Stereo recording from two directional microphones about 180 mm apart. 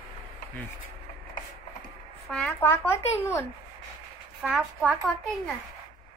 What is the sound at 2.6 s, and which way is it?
Speech, 15° left (ahead or behind).